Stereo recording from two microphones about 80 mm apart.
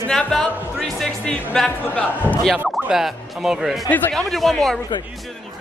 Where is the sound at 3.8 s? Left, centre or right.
Left.